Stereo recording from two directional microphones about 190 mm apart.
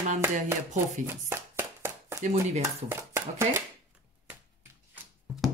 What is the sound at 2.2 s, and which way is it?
Speech, 40° right (ahead or behind).